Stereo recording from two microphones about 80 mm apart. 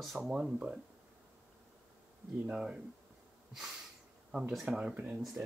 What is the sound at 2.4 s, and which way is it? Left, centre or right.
Speech, centre.